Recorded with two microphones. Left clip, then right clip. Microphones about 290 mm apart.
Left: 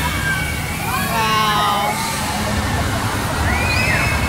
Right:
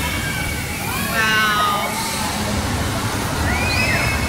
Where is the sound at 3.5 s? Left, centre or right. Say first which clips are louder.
Left 1 dB; centre.